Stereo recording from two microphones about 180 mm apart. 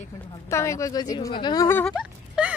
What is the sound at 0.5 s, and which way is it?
A woman's voice, 15° left (ahead or behind).